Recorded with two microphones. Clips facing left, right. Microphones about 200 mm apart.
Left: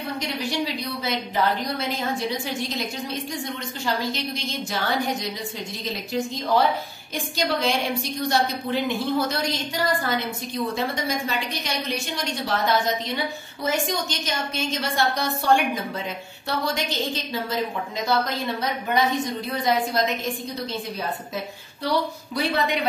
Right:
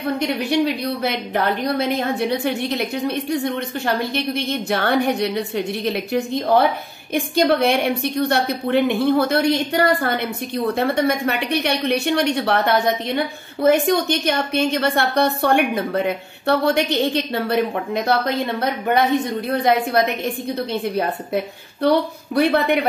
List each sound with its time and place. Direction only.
0.0 s a woman's voice: 60° right (ahead or behind)